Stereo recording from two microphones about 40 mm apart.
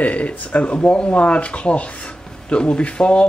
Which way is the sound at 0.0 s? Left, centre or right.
Left.